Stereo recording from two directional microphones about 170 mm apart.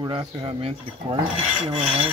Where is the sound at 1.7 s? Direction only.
10° right (ahead or behind).